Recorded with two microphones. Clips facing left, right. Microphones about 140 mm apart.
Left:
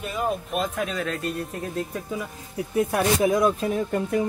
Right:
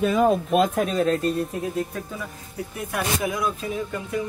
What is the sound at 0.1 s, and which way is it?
Speech, 90° right.